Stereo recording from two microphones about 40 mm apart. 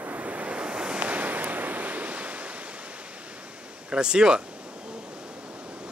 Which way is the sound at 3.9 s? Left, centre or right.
Centre.